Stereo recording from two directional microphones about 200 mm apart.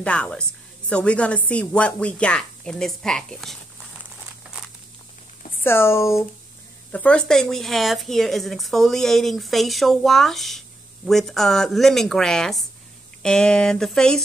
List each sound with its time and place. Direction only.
0.0 s speech: 5° left (ahead or behind)
5.6 s speech: 10° left (ahead or behind)